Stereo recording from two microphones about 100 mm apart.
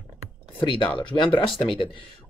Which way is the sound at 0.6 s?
55° left (ahead or behind).